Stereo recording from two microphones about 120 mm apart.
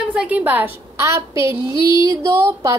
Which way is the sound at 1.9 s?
25° right (ahead or behind).